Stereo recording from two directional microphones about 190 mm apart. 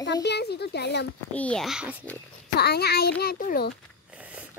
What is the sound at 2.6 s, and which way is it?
A child's voice, 55° left (ahead or behind).